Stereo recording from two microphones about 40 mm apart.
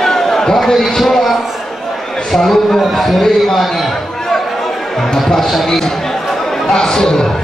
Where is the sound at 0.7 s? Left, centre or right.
Centre.